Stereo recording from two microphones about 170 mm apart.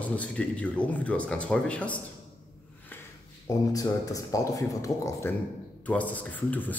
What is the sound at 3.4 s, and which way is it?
A man's voice, 20° left (ahead or behind).